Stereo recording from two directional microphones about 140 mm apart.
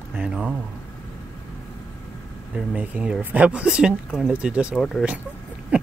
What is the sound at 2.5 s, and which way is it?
Speech, 10° right (ahead or behind).